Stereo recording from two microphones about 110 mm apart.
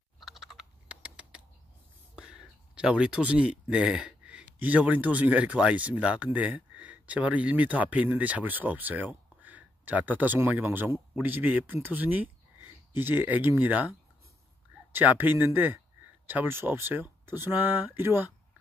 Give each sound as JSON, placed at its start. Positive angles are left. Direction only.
{"t": 0.2, "sound": "computer keyboard", "side_deg": 0}
{"t": 2.1, "sound": "speech", "side_deg": -10}